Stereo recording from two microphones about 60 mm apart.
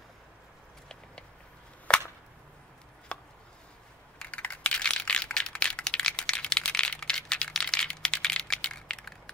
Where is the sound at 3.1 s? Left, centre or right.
Centre.